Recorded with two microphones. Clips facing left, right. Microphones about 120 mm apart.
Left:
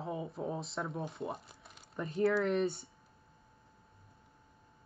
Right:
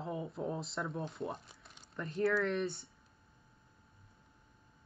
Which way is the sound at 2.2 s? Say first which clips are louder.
Left 3 dB; 25° left (ahead or behind).